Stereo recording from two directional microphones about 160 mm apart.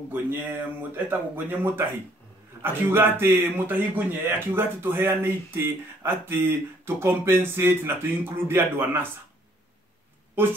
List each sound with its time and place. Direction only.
0.1 s speech: 10° right (ahead or behind)
10.4 s speech: 15° right (ahead or behind)